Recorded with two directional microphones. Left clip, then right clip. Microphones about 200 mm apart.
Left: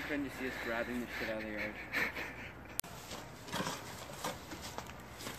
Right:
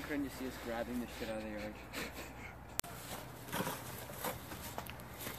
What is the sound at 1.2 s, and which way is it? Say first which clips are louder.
Speech: left 5 dB; centre (ahead or behind).